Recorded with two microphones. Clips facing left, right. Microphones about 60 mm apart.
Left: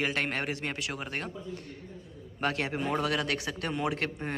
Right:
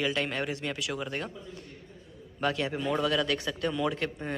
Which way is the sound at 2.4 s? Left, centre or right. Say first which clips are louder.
Right 1 dB; left.